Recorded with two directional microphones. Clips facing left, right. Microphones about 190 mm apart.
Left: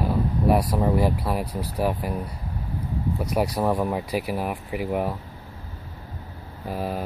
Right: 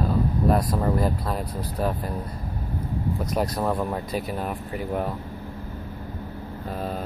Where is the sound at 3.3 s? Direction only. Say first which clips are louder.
Left 3 dB; 10° left (ahead or behind).